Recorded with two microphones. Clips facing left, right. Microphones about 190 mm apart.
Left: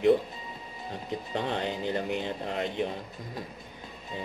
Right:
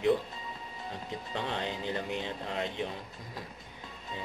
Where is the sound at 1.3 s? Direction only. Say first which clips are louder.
Left 4 dB; 45° left (ahead or behind).